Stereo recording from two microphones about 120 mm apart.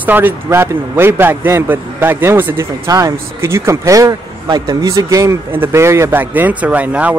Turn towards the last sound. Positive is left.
turn(degrees=-10)  # may be behind; listen again after turning